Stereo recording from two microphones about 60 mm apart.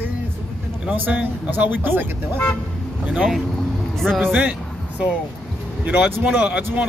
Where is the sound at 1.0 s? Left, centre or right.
Right.